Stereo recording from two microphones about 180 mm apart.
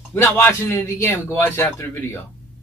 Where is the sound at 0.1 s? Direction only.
10° left (ahead or behind).